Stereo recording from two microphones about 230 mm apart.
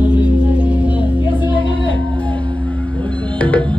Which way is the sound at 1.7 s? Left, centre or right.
Left.